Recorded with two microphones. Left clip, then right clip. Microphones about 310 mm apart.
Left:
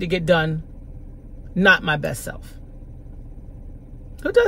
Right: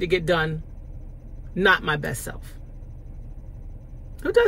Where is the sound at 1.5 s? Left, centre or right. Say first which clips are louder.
Left 3 dB; centre.